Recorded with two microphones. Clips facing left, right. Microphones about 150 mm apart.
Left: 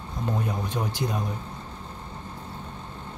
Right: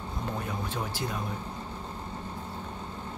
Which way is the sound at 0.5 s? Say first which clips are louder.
Left 4 dB; 20° left (ahead or behind).